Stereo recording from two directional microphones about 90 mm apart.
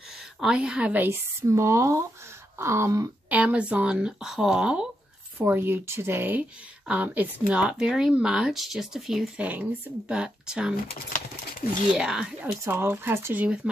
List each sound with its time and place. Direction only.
0.4 s speech: 10° right (ahead or behind)
1.4 s speech: 35° right (ahead or behind)
3.3 s speech: 15° right (ahead or behind)
5.4 s speech: 25° right (ahead or behind); by 9.3 s 5° right (ahead or behind)
9.4 s speech: 15° right (ahead or behind)
12.0 s speech: 10° right (ahead or behind)
12.6 s speech: 25° right (ahead or behind)